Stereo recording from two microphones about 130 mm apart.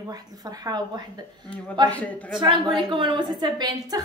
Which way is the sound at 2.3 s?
40° right (ahead or behind).